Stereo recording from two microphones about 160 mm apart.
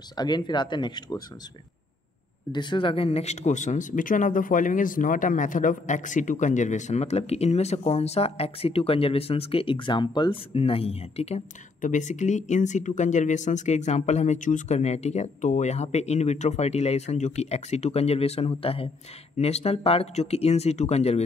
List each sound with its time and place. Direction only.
0.2 s speech: 25° left (ahead or behind)
2.5 s speech: 30° left (ahead or behind)